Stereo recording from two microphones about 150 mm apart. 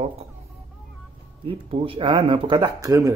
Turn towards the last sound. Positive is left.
turn(degrees=-20)  # may be behind; listen again after turning